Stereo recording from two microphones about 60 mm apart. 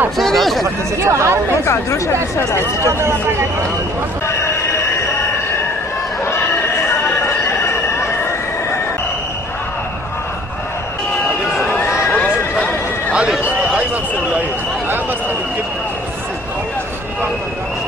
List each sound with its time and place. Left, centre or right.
0.2 s speech: centre
0.9 s speech: right
1.6 s speech: left
2.8 s speech: right
12.1 s neigh: left
13.1 s a sound: centre